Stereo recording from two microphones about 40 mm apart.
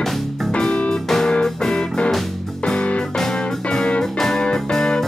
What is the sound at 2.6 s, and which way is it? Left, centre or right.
Music, left.